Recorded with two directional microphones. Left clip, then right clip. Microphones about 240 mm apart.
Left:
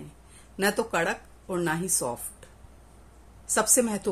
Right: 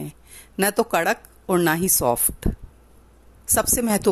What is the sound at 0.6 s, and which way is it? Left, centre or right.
Speech, right.